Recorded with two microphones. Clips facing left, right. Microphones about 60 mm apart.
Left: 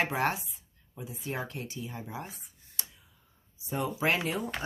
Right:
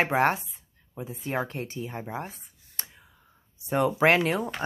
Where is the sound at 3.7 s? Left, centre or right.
Right.